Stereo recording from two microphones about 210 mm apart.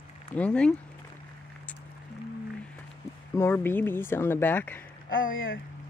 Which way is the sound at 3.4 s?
10° left (ahead or behind).